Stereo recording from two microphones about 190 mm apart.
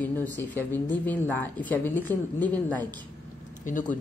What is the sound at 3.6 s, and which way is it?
Speech, 45° left (ahead or behind).